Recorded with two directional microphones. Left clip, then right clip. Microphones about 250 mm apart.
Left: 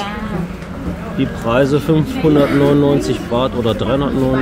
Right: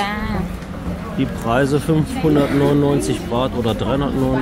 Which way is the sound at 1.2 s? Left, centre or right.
Centre.